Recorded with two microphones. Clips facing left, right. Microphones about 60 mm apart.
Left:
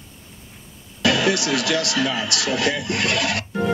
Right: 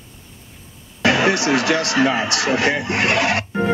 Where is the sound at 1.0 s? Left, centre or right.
Right.